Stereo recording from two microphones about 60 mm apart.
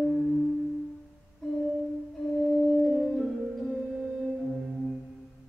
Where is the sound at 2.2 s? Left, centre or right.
Centre.